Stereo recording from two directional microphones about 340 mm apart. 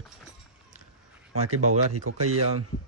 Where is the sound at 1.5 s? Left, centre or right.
Right.